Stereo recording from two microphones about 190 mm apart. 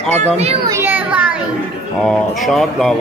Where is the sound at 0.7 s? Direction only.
10° right (ahead or behind).